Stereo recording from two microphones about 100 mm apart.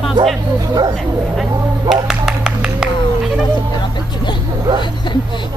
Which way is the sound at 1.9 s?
5° right (ahead or behind).